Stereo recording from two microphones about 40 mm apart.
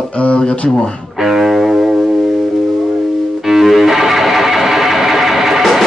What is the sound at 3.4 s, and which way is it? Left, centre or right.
Music, centre.